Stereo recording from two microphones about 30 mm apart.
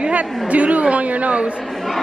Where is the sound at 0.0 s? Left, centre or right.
Right.